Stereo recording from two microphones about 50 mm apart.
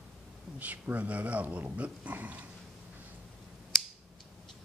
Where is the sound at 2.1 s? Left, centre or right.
Right.